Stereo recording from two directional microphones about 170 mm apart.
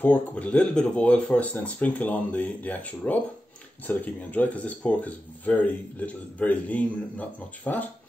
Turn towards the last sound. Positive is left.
turn(degrees=10)  # may be behind; listen again after turning